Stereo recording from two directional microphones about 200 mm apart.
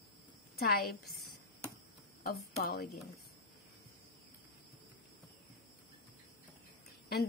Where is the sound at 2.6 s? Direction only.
50° left (ahead or behind).